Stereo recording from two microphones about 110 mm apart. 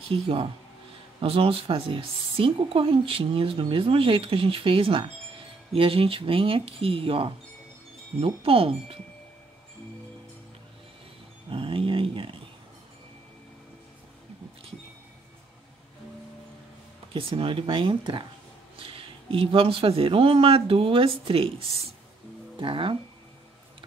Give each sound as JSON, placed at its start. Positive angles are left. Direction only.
{"t": 0.1, "sound": "speech", "side_deg": -55}
{"t": 8.4, "sound": "speech", "side_deg": -60}
{"t": 11.5, "sound": "a sound", "side_deg": -55}
{"t": 17.1, "sound": "speech", "side_deg": -55}
{"t": 22.6, "sound": "speech", "side_deg": -50}